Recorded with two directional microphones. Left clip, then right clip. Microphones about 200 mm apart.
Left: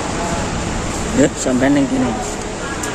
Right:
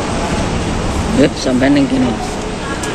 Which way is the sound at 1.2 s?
15° left (ahead or behind).